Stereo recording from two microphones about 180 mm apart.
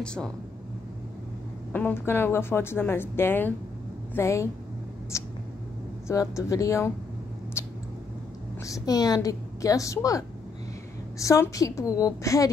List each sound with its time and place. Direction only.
0.0 s speech: 5° left (ahead or behind)
1.7 s speech: 10° left (ahead or behind)
5.1 s mouse: 15° left (ahead or behind)
6.0 s speech: 15° left (ahead or behind)
7.6 s cat: 15° left (ahead or behind)
8.6 s a woman's voice: 20° left (ahead or behind)